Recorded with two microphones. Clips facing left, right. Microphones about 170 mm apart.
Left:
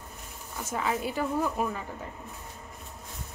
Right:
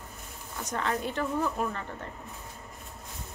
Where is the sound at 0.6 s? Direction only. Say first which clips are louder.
Left 1 dB; 5° left (ahead or behind).